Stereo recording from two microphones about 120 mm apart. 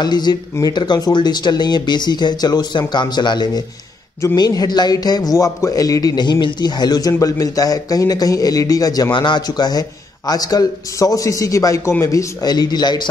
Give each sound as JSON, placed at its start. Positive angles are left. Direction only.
{"t": 0.0, "sound": "speech", "side_deg": 35}